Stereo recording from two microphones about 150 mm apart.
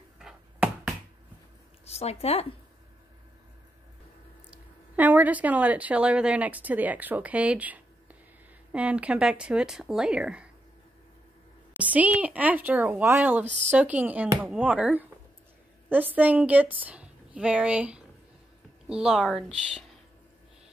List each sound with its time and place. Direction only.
0.2 s bouncing: 5° right (ahead or behind)
1.9 s speech: 45° left (ahead or behind)
4.5 s speech: 10° right (ahead or behind)
11.8 s a woman's voice: 10° right (ahead or behind)